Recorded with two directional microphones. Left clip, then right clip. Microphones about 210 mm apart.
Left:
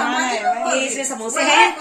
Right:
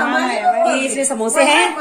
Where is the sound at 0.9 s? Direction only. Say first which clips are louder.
Right 6 dB; 55° right (ahead or behind).